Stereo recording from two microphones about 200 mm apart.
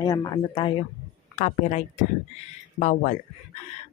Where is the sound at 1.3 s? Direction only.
35° left (ahead or behind).